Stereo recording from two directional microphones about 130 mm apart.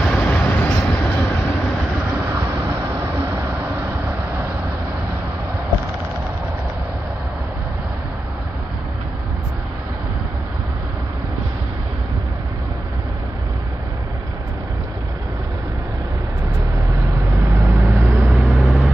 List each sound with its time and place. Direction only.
0.1 s vehicle: 10° left (ahead or behind)
2.3 s vehicle: 20° right (ahead or behind)
17.2 s vehicle: 20° right (ahead or behind)